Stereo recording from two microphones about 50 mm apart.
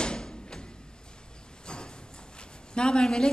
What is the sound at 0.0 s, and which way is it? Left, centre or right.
Music, centre.